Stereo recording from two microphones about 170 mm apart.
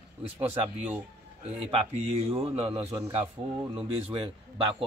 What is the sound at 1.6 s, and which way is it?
Speech, 35° right (ahead or behind).